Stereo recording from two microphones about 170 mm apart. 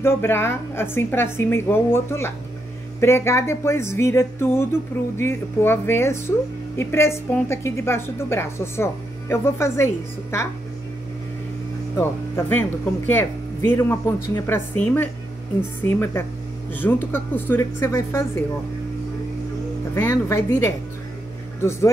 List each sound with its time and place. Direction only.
0.0 s a woman's voice: 15° left (ahead or behind)
12.0 s a woman's voice: 10° left (ahead or behind)
19.9 s a woman's voice: 15° left (ahead or behind)